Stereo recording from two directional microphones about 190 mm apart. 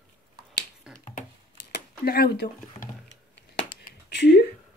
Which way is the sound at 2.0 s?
55° left (ahead or behind).